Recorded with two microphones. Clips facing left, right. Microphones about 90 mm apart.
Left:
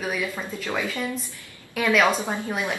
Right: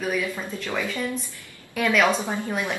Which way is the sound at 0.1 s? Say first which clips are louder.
Right 1 dB; 15° left (ahead or behind).